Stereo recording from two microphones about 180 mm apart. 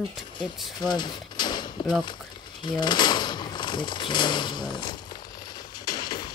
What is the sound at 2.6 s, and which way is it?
Speech, 25° left (ahead or behind).